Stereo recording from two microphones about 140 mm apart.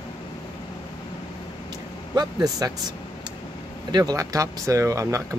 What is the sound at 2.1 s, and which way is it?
Speech, 30° right (ahead or behind).